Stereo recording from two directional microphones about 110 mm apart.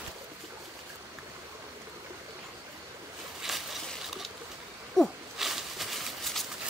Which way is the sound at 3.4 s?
Centre (ahead or behind).